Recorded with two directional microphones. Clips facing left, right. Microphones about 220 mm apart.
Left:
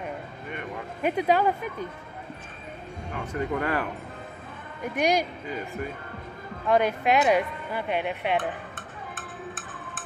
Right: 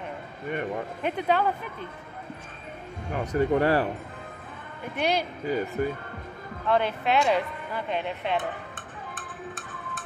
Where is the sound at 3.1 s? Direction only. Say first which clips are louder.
Right 6 dB; 35° right (ahead or behind).